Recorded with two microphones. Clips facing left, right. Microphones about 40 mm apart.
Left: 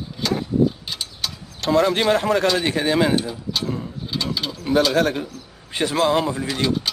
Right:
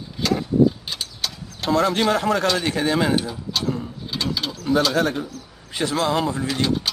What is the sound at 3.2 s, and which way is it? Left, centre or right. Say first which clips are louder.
Speech: left 1 dB; centre.